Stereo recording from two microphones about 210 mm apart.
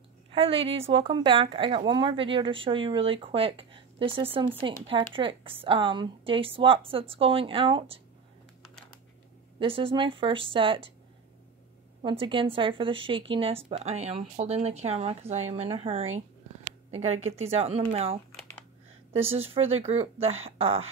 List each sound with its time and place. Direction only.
0.3 s speech: 25° right (ahead or behind)
9.6 s speech: 25° right (ahead or behind)
12.0 s speech: 25° right (ahead or behind)
17.3 s speech: 30° right (ahead or behind)